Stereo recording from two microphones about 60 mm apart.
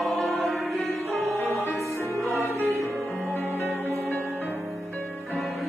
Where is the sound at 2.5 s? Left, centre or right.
Right.